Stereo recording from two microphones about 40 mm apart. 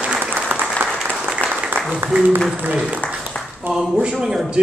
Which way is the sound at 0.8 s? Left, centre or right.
Right.